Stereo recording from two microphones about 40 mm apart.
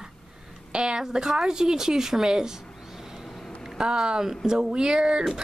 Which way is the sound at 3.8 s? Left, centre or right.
Right.